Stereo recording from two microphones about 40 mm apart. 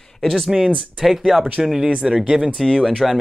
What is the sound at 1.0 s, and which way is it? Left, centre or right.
Speech, centre.